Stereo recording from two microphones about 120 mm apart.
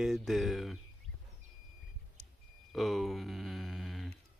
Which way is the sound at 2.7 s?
Centre (ahead or behind).